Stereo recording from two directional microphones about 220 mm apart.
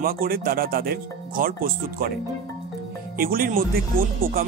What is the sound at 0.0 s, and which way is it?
Speech, 40° right (ahead or behind).